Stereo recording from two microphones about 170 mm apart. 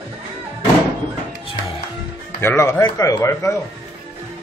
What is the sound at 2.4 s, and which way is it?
Speech, 15° left (ahead or behind).